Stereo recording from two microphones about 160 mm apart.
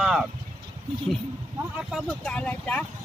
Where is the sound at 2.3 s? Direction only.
10° left (ahead or behind).